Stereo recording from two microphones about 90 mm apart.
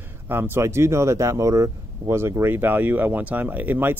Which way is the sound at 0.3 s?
30° right (ahead or behind).